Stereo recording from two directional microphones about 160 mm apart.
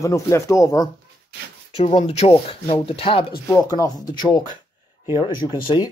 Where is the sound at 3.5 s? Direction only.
20° left (ahead or behind).